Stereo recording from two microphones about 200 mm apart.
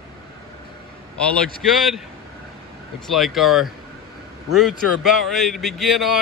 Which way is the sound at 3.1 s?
Centre (ahead or behind).